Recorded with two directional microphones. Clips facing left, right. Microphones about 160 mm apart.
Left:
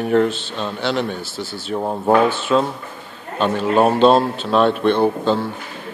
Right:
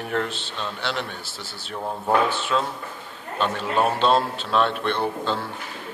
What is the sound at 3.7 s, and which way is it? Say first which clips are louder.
Speech: left 7 dB; 40° left (ahead or behind).